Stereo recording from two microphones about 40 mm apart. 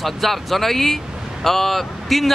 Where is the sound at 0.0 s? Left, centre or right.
Centre.